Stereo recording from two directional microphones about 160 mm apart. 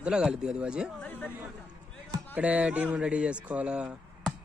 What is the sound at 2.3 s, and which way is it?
Speech, 10° right (ahead or behind).